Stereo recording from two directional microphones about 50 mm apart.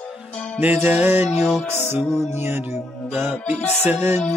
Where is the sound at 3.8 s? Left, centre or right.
Right.